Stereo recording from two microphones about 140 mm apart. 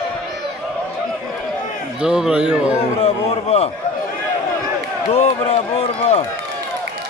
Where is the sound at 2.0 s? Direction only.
5° right (ahead or behind).